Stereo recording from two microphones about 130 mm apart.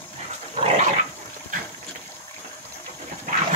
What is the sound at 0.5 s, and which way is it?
Dog, 55° right (ahead or behind).